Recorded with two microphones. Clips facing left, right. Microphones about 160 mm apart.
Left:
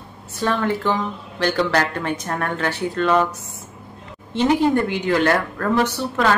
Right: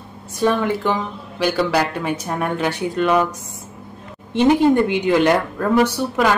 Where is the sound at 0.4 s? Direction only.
15° right (ahead or behind).